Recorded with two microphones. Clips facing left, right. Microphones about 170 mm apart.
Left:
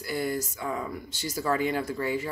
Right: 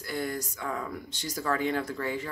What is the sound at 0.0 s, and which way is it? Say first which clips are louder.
Speech: left 3 dB; 10° left (ahead or behind).